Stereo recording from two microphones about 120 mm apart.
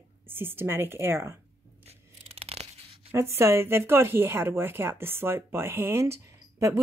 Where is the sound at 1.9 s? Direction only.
60° right (ahead or behind).